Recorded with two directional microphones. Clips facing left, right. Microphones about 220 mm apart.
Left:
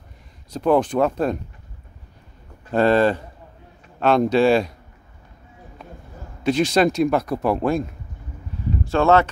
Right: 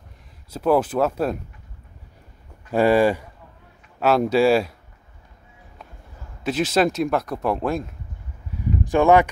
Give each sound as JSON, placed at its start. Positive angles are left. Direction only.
{"t": 0.5, "sound": "speech", "side_deg": -5}
{"t": 2.7, "sound": "speech", "side_deg": -10}
{"t": 6.4, "sound": "speech", "side_deg": -5}
{"t": 8.8, "sound": "speech", "side_deg": -15}